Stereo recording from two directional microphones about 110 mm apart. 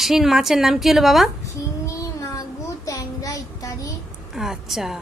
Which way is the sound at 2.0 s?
30° left (ahead or behind).